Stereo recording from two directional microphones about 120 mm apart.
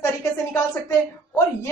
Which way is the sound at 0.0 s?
25° left (ahead or behind).